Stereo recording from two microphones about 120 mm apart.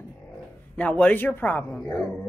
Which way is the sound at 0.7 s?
10° left (ahead or behind).